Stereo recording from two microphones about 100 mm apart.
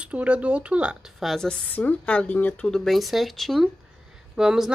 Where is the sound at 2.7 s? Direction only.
Centre (ahead or behind).